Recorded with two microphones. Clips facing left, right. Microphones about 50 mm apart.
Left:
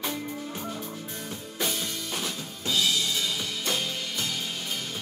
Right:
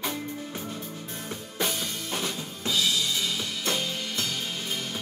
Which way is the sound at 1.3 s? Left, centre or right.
Centre.